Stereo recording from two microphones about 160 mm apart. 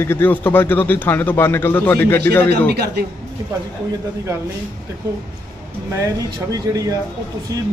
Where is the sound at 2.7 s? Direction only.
90° right.